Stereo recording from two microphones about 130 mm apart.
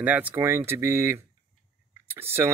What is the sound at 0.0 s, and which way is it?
Speech, 10° right (ahead or behind).